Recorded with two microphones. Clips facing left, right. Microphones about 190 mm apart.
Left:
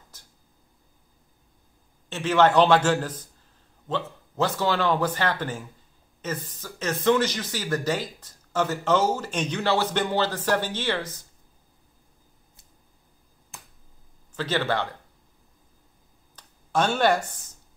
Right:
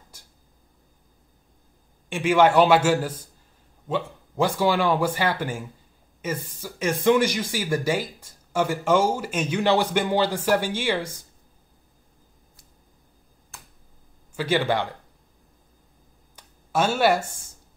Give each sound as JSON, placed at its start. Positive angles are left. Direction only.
{"t": 0.1, "sound": "a sound", "side_deg": -10}
{"t": 2.0, "sound": "speech", "side_deg": -10}
{"t": 13.5, "sound": "finger snapping", "side_deg": 20}
{"t": 14.3, "sound": "speech", "side_deg": -10}
{"t": 16.3, "sound": "speech", "side_deg": -5}